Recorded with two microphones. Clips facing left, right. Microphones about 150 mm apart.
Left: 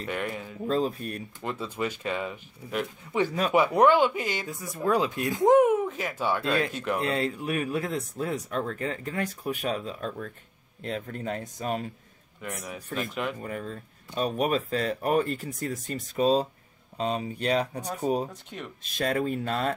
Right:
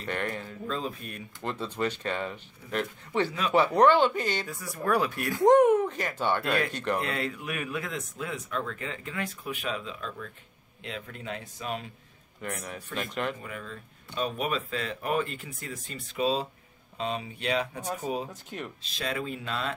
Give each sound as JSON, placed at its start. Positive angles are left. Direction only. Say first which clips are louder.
{"t": 0.0, "sound": "speech", "louder": "left 1 dB", "side_deg": 5}
{"t": 0.7, "sound": "speech", "louder": "left 8 dB", "side_deg": 40}
{"t": 1.4, "sound": "speech", "louder": "right 1 dB", "side_deg": 5}
{"t": 4.5, "sound": "speech", "louder": "left 2 dB", "side_deg": 20}
{"t": 5.4, "sound": "speech", "louder": "even", "side_deg": 5}
{"t": 6.4, "sound": "speech", "louder": "left 2 dB", "side_deg": 25}
{"t": 6.7, "sound": "speech", "louder": "even", "side_deg": 5}
{"t": 7.0, "sound": "a man's voice", "louder": "left 4 dB", "side_deg": 30}
{"t": 12.4, "sound": "speech", "louder": "even", "side_deg": 5}
{"t": 13.4, "sound": "speech", "louder": "left 5 dB", "side_deg": 40}
{"t": 17.8, "sound": "speech", "louder": "left 4 dB", "side_deg": 0}
{"t": 18.8, "sound": "a man's voice", "louder": "left 8 dB", "side_deg": 45}